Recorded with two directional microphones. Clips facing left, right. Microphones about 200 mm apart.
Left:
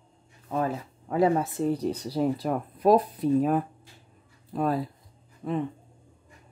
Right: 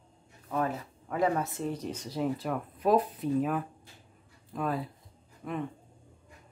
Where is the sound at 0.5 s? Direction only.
30° left (ahead or behind).